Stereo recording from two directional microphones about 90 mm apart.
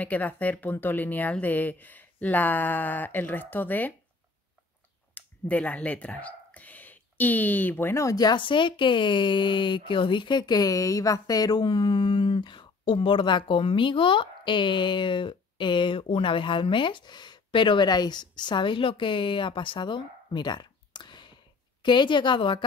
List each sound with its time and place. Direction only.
0.0 s speech: 20° left (ahead or behind)
5.1 s speech: 15° left (ahead or behind); by 8.4 s 45° left (ahead or behind)
8.4 s speech: 65° left (ahead or behind)